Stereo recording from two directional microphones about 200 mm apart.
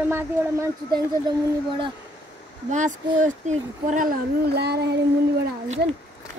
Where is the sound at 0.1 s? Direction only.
15° right (ahead or behind).